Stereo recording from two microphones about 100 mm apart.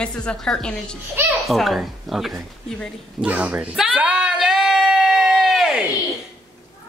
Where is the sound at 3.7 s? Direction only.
5° right (ahead or behind).